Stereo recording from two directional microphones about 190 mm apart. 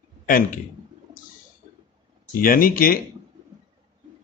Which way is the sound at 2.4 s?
50° left (ahead or behind).